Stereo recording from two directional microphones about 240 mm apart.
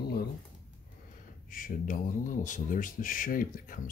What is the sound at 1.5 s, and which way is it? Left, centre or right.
Speech, left.